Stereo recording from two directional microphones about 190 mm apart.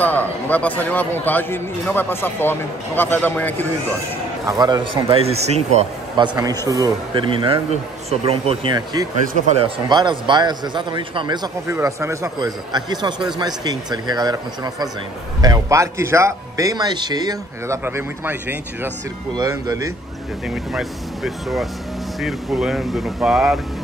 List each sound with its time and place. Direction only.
0.0 s a man's voice: 10° left (ahead or behind)
4.5 s a man's voice: 20° right (ahead or behind)
20.4 s speech: centre (ahead or behind)